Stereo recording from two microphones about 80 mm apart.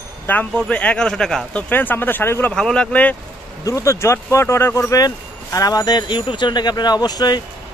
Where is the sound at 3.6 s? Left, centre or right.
Left.